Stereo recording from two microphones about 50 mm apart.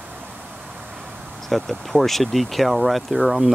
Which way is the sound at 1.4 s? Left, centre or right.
Centre.